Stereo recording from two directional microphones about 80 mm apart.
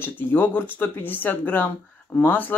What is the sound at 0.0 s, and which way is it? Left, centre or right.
Speech, left.